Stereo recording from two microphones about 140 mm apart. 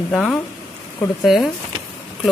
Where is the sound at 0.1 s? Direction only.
5° left (ahead or behind).